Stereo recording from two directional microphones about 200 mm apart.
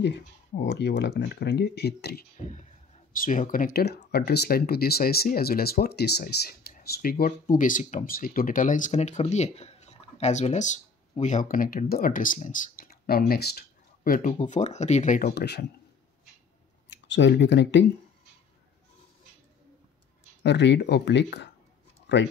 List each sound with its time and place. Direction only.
0.7 s speech: 60° left (ahead or behind)
3.1 s speech: 40° left (ahead or behind)
15.3 s speech: 55° left (ahead or behind)
16.9 s speech: 60° left (ahead or behind)
20.4 s speech: 60° left (ahead or behind)